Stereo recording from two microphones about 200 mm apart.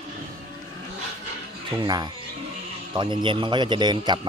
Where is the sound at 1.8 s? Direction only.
20° right (ahead or behind).